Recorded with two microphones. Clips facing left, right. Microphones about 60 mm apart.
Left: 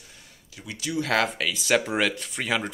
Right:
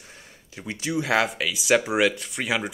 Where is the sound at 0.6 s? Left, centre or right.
Right.